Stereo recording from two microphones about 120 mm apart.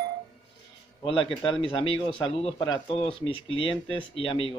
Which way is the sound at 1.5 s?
50° left (ahead or behind).